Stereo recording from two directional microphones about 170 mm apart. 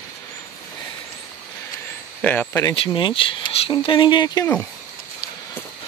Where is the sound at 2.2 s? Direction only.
10° left (ahead or behind).